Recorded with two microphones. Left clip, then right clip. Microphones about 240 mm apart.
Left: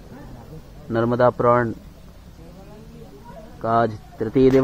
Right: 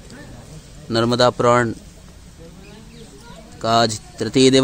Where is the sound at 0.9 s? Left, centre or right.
Centre.